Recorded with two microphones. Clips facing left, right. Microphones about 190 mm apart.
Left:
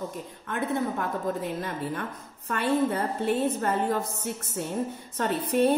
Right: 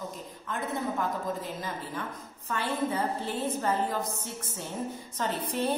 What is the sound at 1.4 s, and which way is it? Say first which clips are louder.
A woman's voice: left 5 dB; 60° left (ahead or behind).